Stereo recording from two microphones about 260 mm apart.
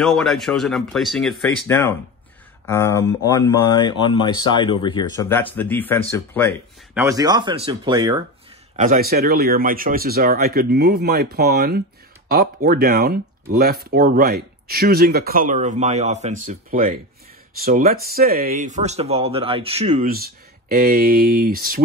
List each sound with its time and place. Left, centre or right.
0.0 s speech: centre
6.9 s speech: centre
8.7 s speech: right